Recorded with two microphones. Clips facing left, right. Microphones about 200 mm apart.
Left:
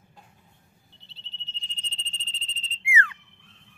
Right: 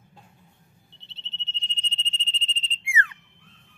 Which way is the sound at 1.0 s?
25° right (ahead or behind).